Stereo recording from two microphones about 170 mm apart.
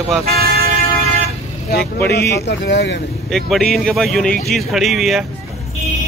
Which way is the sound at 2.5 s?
90° left.